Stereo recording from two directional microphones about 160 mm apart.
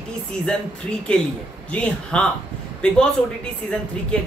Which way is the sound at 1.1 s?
5° left (ahead or behind).